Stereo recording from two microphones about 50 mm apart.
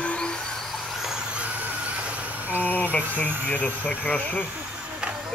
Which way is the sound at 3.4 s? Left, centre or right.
Left.